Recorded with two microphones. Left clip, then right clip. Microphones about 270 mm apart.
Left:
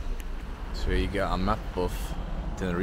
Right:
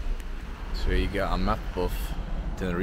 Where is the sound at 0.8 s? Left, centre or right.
Centre.